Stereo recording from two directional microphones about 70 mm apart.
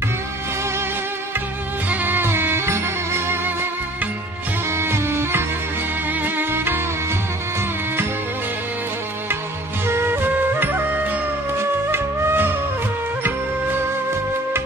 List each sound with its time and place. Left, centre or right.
1.9 s music: right
4.6 s music: right
9.8 s music: right